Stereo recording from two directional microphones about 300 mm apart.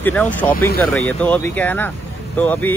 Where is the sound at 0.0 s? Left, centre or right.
Centre.